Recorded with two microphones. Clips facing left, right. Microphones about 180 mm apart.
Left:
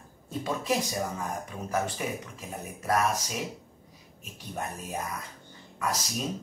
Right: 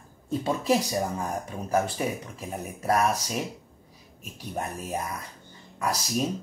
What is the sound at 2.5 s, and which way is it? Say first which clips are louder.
Speech: right 3 dB; 35° right (ahead or behind).